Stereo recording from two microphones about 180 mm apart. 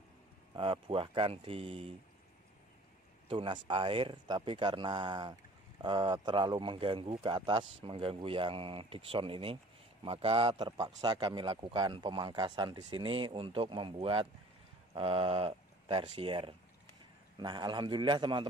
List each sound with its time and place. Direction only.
0.6 s a man's voice: 30° right (ahead or behind)
3.3 s a man's voice: 25° right (ahead or behind)